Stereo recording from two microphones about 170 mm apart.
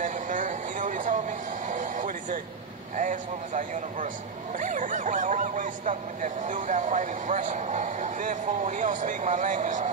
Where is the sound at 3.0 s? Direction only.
50° right (ahead or behind).